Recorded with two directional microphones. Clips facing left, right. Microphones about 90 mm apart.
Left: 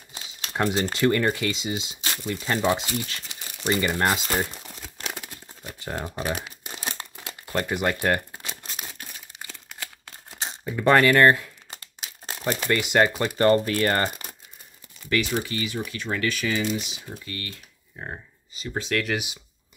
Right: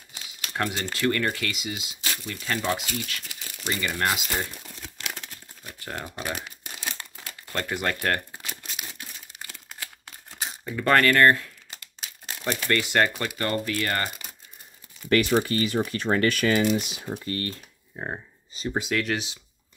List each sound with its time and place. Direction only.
0.1 s crumpling: 25° left (ahead or behind)
0.9 s speech: 20° left (ahead or behind)
5.1 s a sound: 10° left (ahead or behind)
6.3 s crumpling: 5° left (ahead or behind)
7.2 s crumpling: 15° left (ahead or behind)
8.5 s a sound: 35° left (ahead or behind)
10.6 s speech: 10° left (ahead or behind)
12.6 s speech: 15° left (ahead or behind)
13.3 s speech: 35° left (ahead or behind)
15.0 s speech: 45° right (ahead or behind)
17.2 s speech: 35° right (ahead or behind)
17.9 s speech: 25° right (ahead or behind)
18.8 s speech: 5° right (ahead or behind)
19.1 s speech: 15° left (ahead or behind)